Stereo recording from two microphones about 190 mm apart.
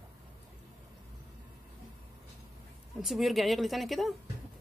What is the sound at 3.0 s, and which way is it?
Speech, centre (ahead or behind).